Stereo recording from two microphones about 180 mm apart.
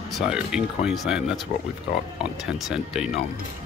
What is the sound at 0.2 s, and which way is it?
Speech, 5° right (ahead or behind).